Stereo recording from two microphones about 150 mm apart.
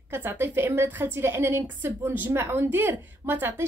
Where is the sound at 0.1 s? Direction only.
15° right (ahead or behind).